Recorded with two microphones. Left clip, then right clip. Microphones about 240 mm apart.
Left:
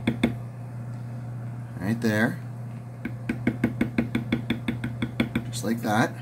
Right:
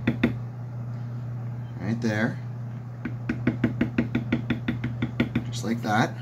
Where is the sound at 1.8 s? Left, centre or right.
Left.